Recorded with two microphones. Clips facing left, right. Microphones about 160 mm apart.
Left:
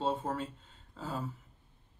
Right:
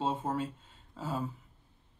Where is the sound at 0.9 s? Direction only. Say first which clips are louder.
Right 3 dB; 15° right (ahead or behind).